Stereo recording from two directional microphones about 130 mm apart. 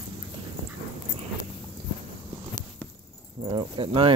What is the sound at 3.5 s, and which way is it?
Speech, 40° right (ahead or behind).